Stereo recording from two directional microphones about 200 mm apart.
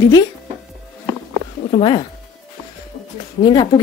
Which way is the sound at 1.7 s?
25° left (ahead or behind).